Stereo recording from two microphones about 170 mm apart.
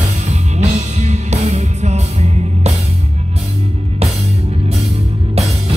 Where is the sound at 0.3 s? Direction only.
40° right (ahead or behind).